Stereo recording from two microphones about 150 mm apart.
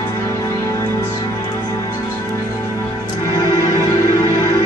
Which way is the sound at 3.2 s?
20° left (ahead or behind).